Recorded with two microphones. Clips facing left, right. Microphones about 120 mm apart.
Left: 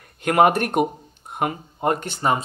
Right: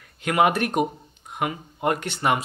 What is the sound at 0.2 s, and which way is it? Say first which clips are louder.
Speech: left 4 dB; 45° left (ahead or behind).